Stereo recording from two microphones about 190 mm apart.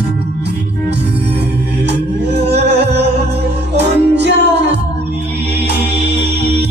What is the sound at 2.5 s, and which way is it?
Music, 60° right (ahead or behind).